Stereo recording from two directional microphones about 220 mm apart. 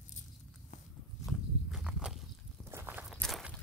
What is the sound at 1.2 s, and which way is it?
Walk, centre (ahead or behind).